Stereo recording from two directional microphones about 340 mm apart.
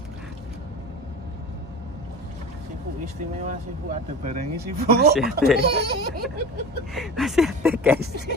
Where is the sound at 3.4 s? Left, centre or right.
Right.